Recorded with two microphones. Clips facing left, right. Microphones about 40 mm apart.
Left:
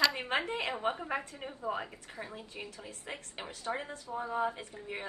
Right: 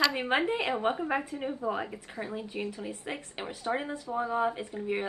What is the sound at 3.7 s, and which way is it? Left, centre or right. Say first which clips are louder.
Speech: right 5 dB; right.